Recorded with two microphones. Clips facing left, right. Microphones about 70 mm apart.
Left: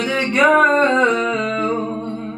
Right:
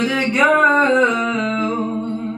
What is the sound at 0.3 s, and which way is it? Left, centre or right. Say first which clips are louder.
Music: left 2 dB; centre.